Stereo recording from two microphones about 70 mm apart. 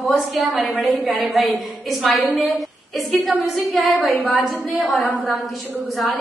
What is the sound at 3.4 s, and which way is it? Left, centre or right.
Speech, centre.